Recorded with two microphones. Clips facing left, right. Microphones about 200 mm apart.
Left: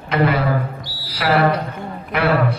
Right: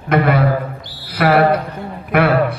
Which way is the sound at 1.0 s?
55° right (ahead or behind).